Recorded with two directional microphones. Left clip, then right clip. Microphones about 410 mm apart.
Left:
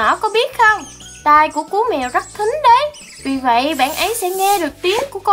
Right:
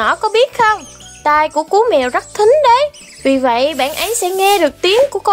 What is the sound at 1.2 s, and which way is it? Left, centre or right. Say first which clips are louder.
Speech: left 1 dB; centre.